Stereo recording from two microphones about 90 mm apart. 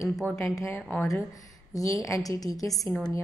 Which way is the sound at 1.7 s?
40° left (ahead or behind).